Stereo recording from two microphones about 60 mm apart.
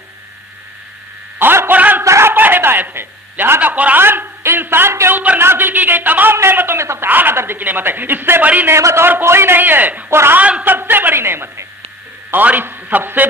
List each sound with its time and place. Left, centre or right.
1.4 s a sound: right
2.0 s a sound: right
2.3 s a sound: right
3.7 s a man's voice: right
4.0 s a man's voice: right
5.1 s speech: right
5.4 s speech: right
7.1 s speech: right
8.6 s a man's voice: right
10.0 s a man's voice: right
10.3 s a man's voice: right
10.6 s a man's voice: right